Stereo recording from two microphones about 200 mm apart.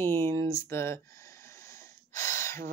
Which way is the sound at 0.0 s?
10° left (ahead or behind).